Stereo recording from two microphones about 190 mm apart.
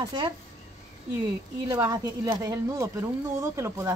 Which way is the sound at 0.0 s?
20° right (ahead or behind).